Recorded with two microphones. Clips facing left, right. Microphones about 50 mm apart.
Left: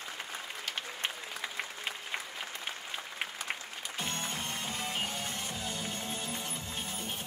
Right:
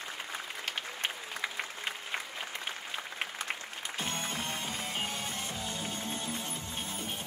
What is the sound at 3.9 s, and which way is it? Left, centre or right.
Music, right.